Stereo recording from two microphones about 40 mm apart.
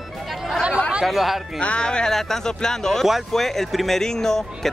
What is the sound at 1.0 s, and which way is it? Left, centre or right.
Speech, centre.